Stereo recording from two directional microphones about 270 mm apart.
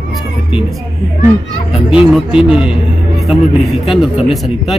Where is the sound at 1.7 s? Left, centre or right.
Centre.